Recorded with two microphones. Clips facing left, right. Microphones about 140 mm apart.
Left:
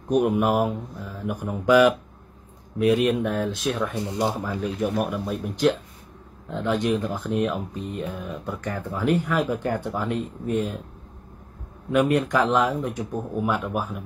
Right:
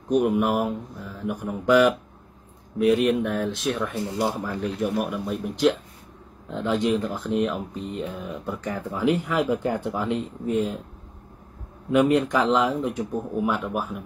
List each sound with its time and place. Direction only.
0.1 s speech: centre (ahead or behind)
3.9 s speech: 20° left (ahead or behind)
4.3 s speech: centre (ahead or behind)
10.5 s speech: centre (ahead or behind)
11.9 s speech: centre (ahead or behind)